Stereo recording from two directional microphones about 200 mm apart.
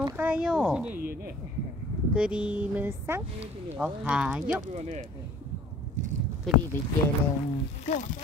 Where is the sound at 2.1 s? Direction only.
5° right (ahead or behind).